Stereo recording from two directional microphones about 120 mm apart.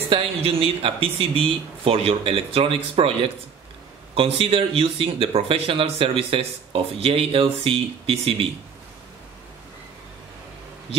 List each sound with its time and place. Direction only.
0.1 s speech: 50° right (ahead or behind)